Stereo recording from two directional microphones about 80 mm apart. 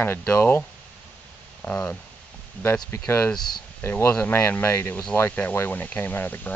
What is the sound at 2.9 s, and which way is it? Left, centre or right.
Speech, left.